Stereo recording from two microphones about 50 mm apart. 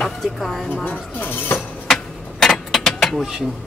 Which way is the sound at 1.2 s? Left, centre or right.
Left.